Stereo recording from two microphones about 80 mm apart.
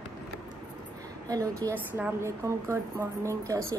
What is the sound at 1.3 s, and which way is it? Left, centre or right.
Speech, right.